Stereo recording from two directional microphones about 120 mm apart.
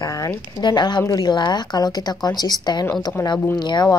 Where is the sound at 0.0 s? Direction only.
30° left (ahead or behind).